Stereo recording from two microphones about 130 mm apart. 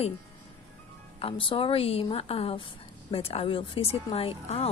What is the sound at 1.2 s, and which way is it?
Speech, 45° left (ahead or behind).